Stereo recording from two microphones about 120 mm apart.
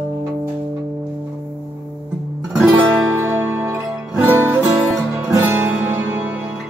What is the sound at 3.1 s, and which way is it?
Music, 20° right (ahead or behind).